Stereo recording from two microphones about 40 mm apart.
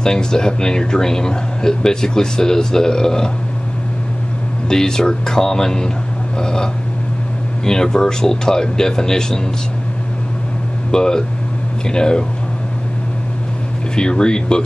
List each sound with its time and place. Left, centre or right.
0.0 s speech: centre
4.6 s speech: centre
10.9 s speech: centre
13.9 s speech: left